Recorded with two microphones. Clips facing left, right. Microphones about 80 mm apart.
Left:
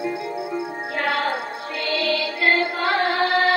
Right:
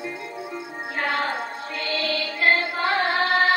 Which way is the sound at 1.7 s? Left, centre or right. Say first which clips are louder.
Left 4 dB; right.